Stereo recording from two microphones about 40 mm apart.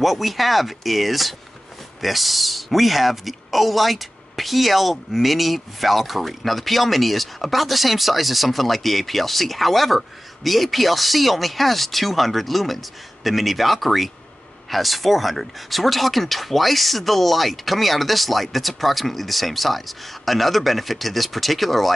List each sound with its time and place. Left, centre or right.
0.0 s speech: centre